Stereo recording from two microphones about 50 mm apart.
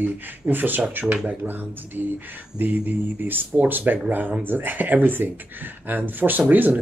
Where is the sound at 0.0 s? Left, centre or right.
Right.